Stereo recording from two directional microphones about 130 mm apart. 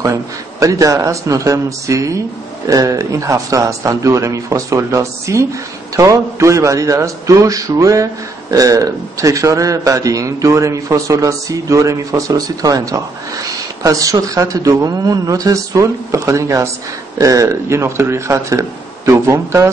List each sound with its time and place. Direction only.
0.0 s a man's voice: 25° right (ahead or behind)